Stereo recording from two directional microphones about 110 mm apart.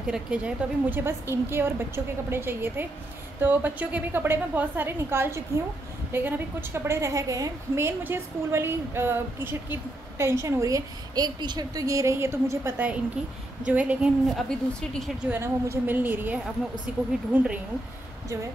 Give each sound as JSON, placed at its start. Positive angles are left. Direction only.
{"t": 0.0, "sound": "a woman's voice", "side_deg": -10}
{"t": 13.7, "sound": "a woman's voice", "side_deg": -10}
{"t": 14.3, "sound": "speech", "side_deg": 5}
{"t": 15.2, "sound": "a woman's voice", "side_deg": -20}